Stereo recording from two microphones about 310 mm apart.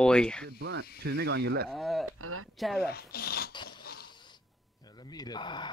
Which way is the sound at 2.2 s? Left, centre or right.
Right.